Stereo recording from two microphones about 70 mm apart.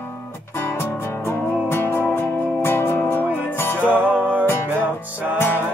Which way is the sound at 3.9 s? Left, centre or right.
Centre.